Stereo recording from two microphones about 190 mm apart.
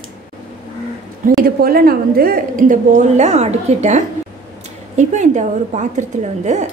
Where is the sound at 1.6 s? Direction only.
50° right (ahead or behind).